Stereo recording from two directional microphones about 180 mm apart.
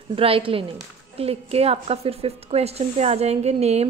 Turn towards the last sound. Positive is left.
turn(degrees=-35)  # may be behind; listen again after turning